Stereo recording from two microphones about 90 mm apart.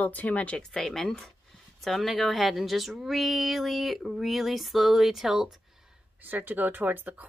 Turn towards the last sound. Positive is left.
turn(degrees=-20)  # may be behind; listen again after turning